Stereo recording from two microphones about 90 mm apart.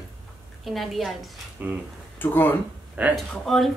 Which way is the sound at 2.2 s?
25° left (ahead or behind).